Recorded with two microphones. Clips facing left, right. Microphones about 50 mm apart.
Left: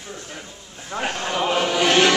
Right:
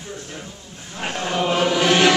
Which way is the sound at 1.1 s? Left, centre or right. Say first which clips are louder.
Right 4 dB; centre.